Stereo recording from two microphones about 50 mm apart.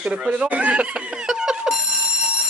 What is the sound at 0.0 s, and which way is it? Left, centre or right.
Speech, right.